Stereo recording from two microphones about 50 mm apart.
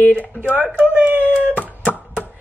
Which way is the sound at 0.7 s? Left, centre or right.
Right.